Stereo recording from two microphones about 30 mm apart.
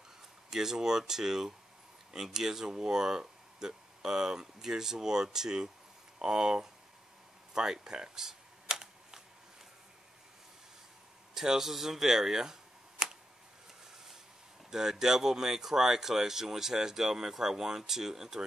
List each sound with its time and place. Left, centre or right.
0.5 s speech: centre
7.5 s camera: centre
11.3 s speech: centre
13.0 s tick: right
14.7 s speech: right